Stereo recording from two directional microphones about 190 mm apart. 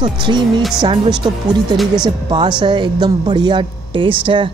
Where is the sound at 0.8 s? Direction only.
25° right (ahead or behind).